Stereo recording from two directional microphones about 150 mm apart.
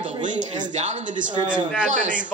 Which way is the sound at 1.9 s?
55° right (ahead or behind).